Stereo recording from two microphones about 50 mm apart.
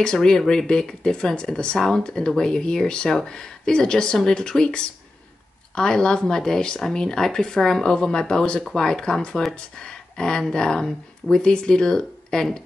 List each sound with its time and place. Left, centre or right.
0.0 s speech: centre